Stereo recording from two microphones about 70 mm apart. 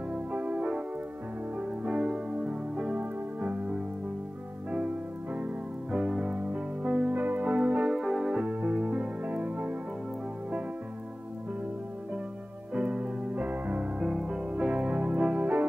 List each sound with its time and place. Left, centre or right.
0.1 s music: centre
5.9 s music: centre
7.2 s music: right
7.9 s music: centre; by 9.8 s right
12.7 s music: centre
15.1 s keyboard: centre